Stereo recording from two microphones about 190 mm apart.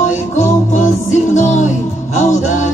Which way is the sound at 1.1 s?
40° left (ahead or behind).